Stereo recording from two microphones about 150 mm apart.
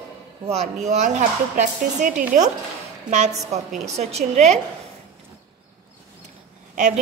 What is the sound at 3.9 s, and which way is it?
Speech, 50° right (ahead or behind).